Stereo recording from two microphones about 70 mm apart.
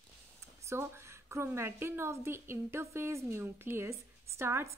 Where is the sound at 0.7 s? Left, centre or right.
Right.